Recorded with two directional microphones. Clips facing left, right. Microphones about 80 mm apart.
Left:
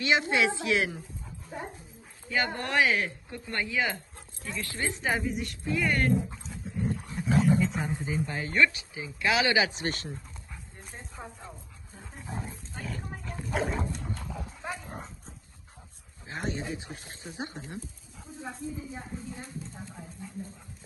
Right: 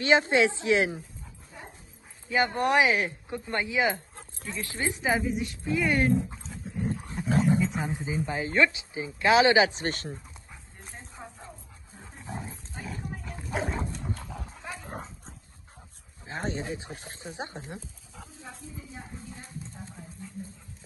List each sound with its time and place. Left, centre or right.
0.0 s speech: right
2.2 s speech: right
3.9 s a sound: right
4.6 s speech: right
5.0 s speech: centre
8.4 s speech: centre; by 10.1 s right
10.1 s dog: centre
12.7 s a sound: centre
13.4 s dog: centre
16.3 s speech: right
18.5 s speech: centre